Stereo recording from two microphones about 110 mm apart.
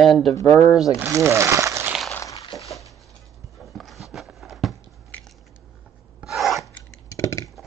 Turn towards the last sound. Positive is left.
turn(degrees=30)  # may be behind; listen again after turning